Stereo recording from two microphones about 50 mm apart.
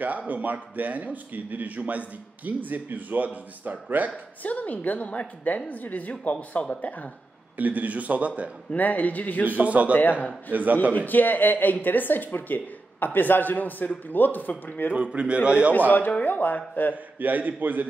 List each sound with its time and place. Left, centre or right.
0.0 s a man's voice: right
4.4 s speech: left
7.5 s a man's voice: right
8.7 s speech: left
9.5 s a man's voice: right
11.1 s speech: left
15.0 s a man's voice: right
15.9 s speech: left
16.9 s a man's voice: right